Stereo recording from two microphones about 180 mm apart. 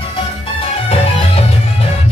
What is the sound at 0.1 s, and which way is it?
Music, 30° left (ahead or behind).